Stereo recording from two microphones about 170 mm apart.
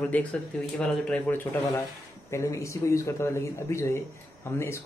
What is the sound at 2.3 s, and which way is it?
Speech, 15° left (ahead or behind).